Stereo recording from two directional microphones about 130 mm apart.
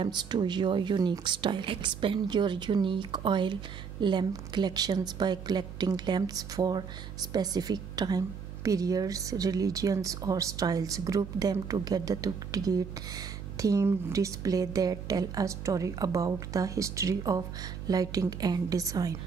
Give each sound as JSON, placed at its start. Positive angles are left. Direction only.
{"t": 0.0, "sound": "a woman's voice", "side_deg": -35}